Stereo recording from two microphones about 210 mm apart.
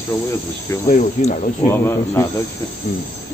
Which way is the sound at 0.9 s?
35° left (ahead or behind).